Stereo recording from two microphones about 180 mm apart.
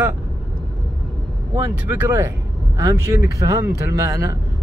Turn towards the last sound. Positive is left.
turn(degrees=-20)  # may be behind; listen again after turning